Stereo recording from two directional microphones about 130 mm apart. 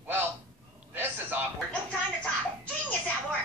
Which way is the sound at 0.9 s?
15° right (ahead or behind).